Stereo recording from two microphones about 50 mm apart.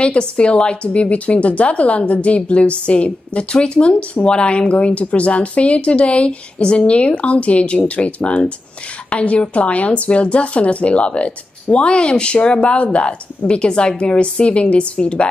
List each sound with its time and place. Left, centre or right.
0.0 s a woman's voice: left